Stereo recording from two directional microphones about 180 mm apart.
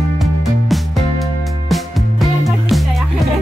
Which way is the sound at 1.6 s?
Centre (ahead or behind).